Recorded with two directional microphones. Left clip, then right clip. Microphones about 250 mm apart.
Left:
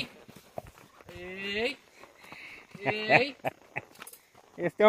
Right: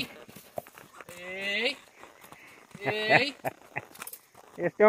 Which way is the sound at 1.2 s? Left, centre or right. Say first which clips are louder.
Right 2 dB; centre.